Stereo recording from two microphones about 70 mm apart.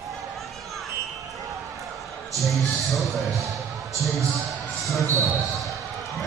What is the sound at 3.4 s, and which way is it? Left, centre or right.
Music, right.